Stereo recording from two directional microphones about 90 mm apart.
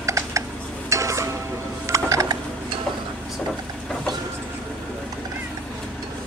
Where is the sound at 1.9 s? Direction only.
35° right (ahead or behind).